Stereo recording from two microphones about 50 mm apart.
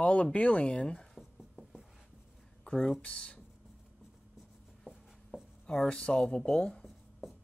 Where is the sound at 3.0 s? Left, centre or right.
Left.